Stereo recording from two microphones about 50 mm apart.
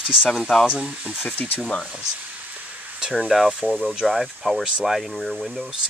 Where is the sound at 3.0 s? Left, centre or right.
Centre.